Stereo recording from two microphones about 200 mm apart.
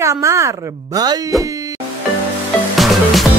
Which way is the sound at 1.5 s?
15° right (ahead or behind).